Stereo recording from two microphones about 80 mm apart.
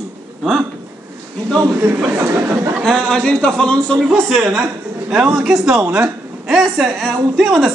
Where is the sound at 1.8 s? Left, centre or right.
Right.